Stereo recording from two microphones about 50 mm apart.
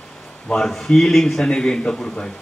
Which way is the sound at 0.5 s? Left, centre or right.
Centre.